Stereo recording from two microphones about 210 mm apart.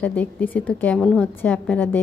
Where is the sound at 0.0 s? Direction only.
10° left (ahead or behind).